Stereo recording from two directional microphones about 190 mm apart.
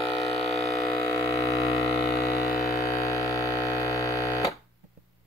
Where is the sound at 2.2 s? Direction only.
15° left (ahead or behind).